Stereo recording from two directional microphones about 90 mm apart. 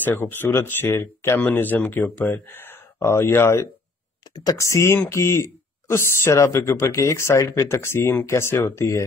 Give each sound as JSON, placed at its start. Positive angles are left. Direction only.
{"t": 0.0, "sound": "speech", "side_deg": 20}
{"t": 2.3, "sound": "a sound", "side_deg": 25}
{"t": 3.3, "sound": "speech", "side_deg": 30}